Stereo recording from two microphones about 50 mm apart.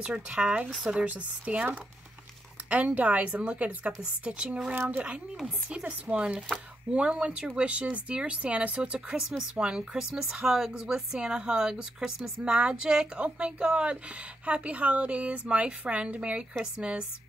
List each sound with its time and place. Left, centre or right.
0.0 s speech: centre
2.7 s speech: right